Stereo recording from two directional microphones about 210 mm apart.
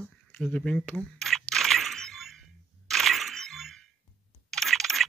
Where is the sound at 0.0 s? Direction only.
5° left (ahead or behind).